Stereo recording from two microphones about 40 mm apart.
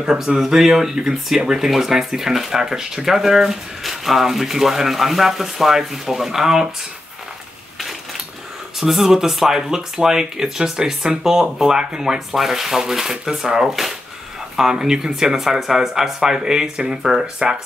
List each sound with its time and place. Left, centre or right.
0.0 s speech: centre
0.4 s speech: centre
8.7 s speech: centre